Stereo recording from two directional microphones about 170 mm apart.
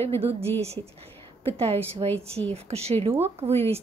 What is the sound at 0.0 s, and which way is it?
Speech, 35° right (ahead or behind).